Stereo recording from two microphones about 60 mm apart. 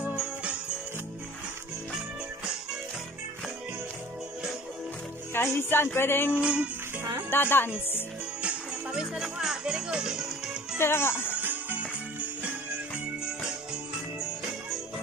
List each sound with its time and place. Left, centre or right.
0.1 s music: centre
1.9 s music: centre
5.3 s speech: left
6.4 s music: centre
7.2 s speech: left
8.4 s music: centre
9.2 s speech: centre
10.8 s speech: left
11.3 s music: right